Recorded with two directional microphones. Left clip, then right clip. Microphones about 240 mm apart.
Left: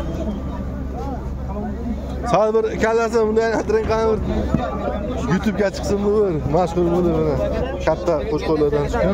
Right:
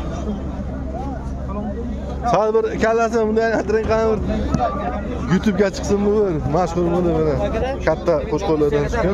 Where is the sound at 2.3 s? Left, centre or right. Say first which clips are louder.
Even; centre.